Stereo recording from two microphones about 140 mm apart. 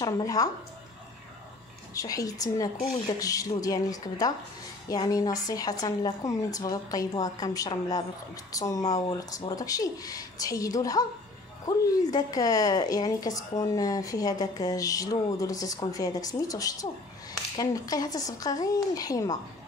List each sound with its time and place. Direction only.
0.0 s speech: 25° left (ahead or behind)
2.0 s a woman's voice: 25° left (ahead or behind)